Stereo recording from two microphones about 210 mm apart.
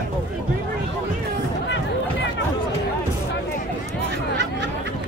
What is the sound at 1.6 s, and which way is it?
Chatter, 60° left (ahead or behind).